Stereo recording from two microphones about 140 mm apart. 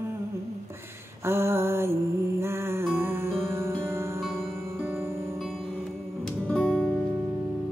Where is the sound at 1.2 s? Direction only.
20° right (ahead or behind).